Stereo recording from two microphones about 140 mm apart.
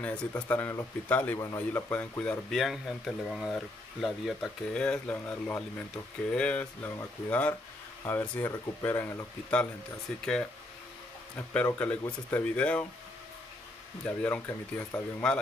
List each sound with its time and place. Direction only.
0.0 s speech: 10° left (ahead or behind)
1.9 s speech: 10° left (ahead or behind)
11.3 s speech: 10° left (ahead or behind)
14.0 s speech: 10° left (ahead or behind)